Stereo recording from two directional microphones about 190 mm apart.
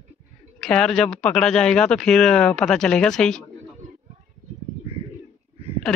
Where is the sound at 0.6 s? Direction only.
5° left (ahead or behind).